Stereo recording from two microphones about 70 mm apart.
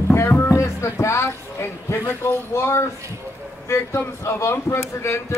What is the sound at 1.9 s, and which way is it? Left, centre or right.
Speech, left.